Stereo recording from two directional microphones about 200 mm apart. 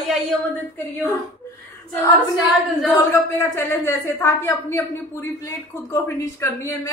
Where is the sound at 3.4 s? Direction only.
15° left (ahead or behind).